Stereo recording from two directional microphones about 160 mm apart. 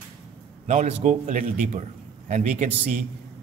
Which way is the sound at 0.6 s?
50° right (ahead or behind).